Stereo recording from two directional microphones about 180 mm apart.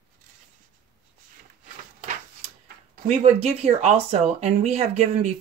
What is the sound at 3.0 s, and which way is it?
Speech, 35° right (ahead or behind).